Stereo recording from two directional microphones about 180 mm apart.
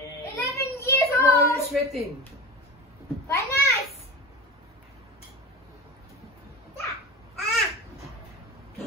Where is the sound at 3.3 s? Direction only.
15° left (ahead or behind).